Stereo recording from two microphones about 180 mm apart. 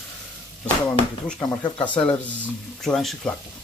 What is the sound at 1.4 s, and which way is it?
Speech, 20° left (ahead or behind).